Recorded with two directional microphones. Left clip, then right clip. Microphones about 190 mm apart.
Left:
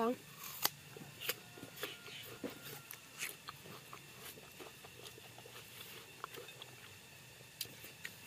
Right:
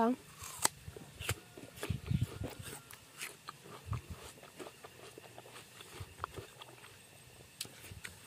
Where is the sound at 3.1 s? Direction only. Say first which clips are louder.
Left 1 dB; 30° right (ahead or behind).